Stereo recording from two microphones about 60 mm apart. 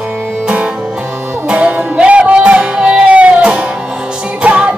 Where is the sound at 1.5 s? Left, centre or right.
Centre.